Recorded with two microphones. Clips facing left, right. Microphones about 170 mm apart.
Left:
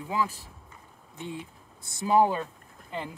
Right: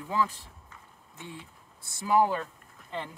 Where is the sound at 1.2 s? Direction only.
20° left (ahead or behind).